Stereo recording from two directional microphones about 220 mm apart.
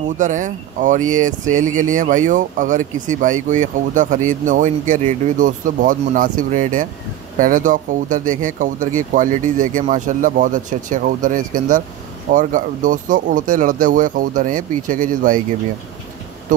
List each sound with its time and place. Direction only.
0.2 s speech: 35° right (ahead or behind)